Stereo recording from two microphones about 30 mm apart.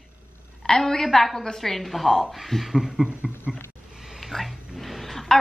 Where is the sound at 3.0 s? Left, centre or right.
Right.